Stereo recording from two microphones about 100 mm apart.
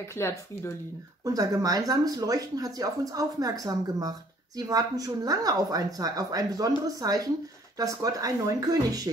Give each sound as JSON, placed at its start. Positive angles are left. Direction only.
{"t": 0.2, "sound": "speech", "side_deg": 25}
{"t": 1.2, "sound": "speech", "side_deg": -35}